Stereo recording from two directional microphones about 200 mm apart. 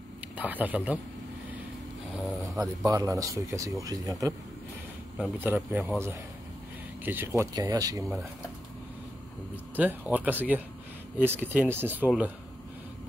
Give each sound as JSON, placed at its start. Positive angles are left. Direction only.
{"t": 0.4, "sound": "speech", "side_deg": -10}
{"t": 2.1, "sound": "a sound", "side_deg": 0}
{"t": 2.8, "sound": "speech", "side_deg": -15}
{"t": 5.2, "sound": "speech", "side_deg": -5}
{"t": 7.1, "sound": "speech", "side_deg": -10}
{"t": 8.0, "sound": "speech", "side_deg": 0}
{"t": 9.8, "sound": "speech", "side_deg": -10}